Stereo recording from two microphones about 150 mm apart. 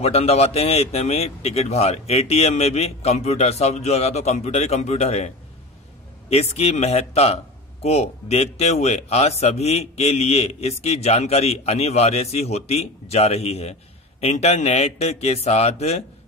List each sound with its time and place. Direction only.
0.0 s speech: 45° left (ahead or behind)
6.3 s speech: 45° left (ahead or behind)